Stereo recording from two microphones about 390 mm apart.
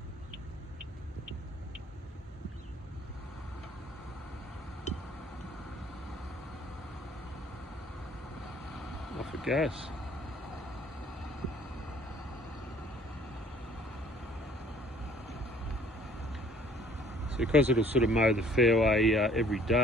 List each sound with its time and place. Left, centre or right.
4.9 s a sound: centre
8.7 s vehicle: centre
17.4 s speech: centre